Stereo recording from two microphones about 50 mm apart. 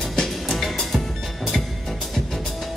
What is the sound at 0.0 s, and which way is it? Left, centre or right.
Music, centre.